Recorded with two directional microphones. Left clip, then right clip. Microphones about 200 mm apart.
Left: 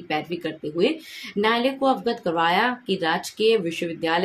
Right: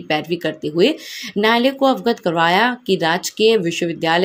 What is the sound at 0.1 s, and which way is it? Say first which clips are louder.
Speech: right 7 dB; 40° right (ahead or behind).